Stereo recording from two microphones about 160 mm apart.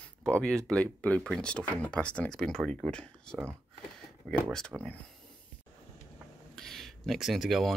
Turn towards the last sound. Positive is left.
turn(degrees=0)  # may be behind; listen again after turning